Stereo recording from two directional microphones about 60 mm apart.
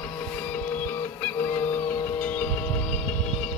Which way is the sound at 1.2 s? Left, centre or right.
Left.